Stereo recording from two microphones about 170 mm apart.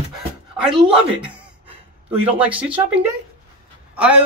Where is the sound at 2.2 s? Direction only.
10° right (ahead or behind).